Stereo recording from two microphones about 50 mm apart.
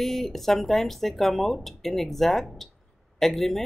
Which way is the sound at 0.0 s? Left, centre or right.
Centre.